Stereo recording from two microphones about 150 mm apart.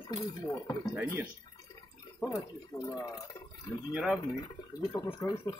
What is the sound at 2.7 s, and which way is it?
Speech, 20° left (ahead or behind).